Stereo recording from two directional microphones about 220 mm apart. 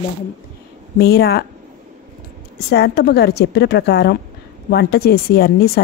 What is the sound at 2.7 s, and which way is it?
Speech, 50° left (ahead or behind).